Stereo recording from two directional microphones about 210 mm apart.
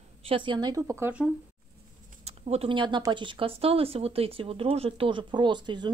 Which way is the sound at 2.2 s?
30° right (ahead or behind).